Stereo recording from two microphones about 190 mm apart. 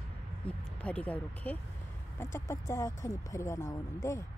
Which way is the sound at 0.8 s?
5° left (ahead or behind).